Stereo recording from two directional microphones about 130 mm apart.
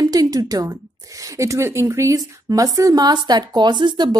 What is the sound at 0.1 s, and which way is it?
A woman's voice, 30° right (ahead or behind).